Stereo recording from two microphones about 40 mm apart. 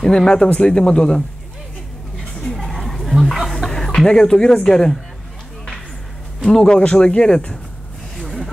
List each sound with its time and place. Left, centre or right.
0.0 s speech: centre
2.6 s chatter: centre
3.6 s speech: centre
6.4 s speech: centre